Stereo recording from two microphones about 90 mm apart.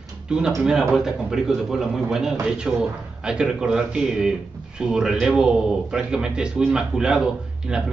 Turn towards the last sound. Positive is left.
turn(degrees=-10)  # may be behind; listen again after turning